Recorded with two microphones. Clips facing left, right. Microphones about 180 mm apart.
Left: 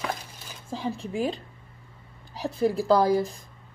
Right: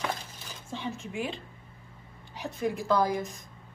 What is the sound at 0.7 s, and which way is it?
A woman's voice, 35° left (ahead or behind).